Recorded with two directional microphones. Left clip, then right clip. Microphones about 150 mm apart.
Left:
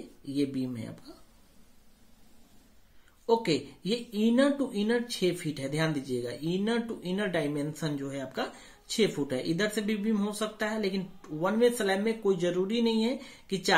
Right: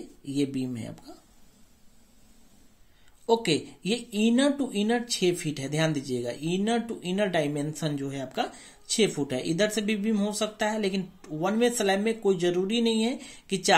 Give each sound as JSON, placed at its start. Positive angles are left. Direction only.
{"t": 0.2, "sound": "speech", "side_deg": -40}
{"t": 3.9, "sound": "speech", "side_deg": -40}